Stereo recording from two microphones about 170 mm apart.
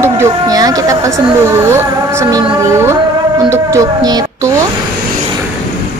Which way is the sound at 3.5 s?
20° right (ahead or behind).